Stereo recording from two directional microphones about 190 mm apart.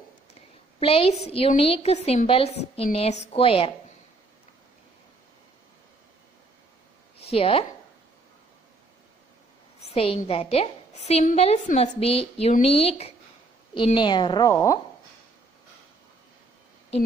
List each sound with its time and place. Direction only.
0.3 s a sound: 30° left (ahead or behind)
1.6 s a woman's voice: 30° left (ahead or behind)
7.2 s speech: 30° left (ahead or behind)
9.8 s a woman's voice: 30° left (ahead or behind)